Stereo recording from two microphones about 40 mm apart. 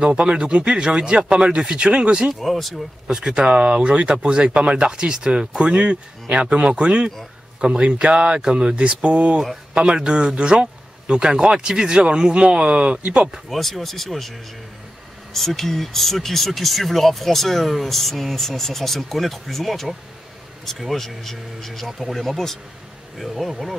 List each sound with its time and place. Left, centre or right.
0.0 s speech: right
2.4 s speech: centre
3.1 s speech: centre
8.4 s speech: centre
9.8 s speech: right
13.5 s speech: centre
15.3 s speech: centre